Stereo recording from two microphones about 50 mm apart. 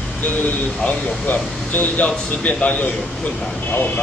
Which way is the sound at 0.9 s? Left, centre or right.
Left.